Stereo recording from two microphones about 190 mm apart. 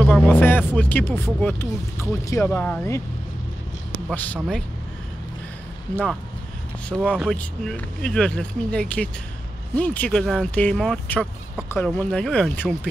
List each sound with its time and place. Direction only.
0.0 s speech: 10° left (ahead or behind)
4.1 s speech: 10° left (ahead or behind)
6.9 s speech: 5° left (ahead or behind)